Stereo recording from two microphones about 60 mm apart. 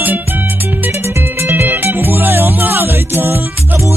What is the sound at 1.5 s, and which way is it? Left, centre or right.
Music, right.